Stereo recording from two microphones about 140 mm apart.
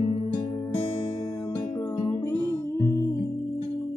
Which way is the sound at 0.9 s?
40° left (ahead or behind).